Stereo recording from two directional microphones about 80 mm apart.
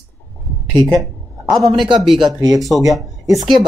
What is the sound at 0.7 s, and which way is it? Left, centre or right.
Speech, right.